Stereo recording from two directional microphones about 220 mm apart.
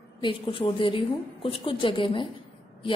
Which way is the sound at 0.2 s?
20° left (ahead or behind).